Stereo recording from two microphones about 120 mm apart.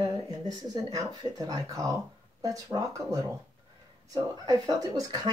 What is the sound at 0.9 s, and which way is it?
Speech, 30° right (ahead or behind).